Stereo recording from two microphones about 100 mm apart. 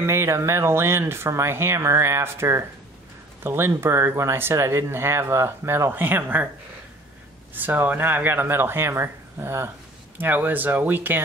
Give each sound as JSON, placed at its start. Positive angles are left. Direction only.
{"t": 0.0, "sound": "speech", "side_deg": -25}
{"t": 7.5, "sound": "speech", "side_deg": -20}